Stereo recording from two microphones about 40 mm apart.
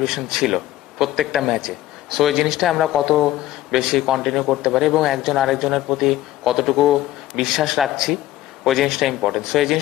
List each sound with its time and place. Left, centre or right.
0.0 s a man's voice: centre